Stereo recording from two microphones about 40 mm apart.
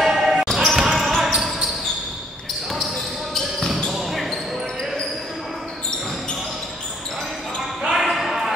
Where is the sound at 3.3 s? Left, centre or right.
Centre.